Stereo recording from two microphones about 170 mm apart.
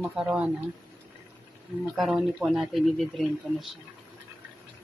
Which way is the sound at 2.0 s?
Centre (ahead or behind).